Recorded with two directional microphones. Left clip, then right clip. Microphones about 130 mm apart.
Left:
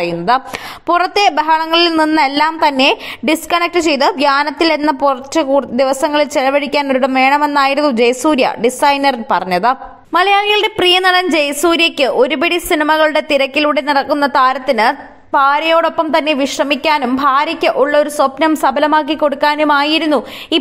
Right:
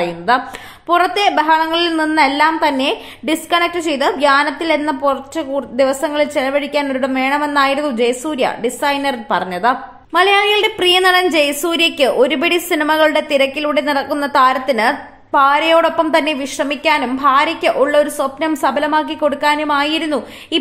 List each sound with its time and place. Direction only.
0.3 s a woman's voice: 50° left (ahead or behind)
10.1 s a woman's voice: 35° left (ahead or behind)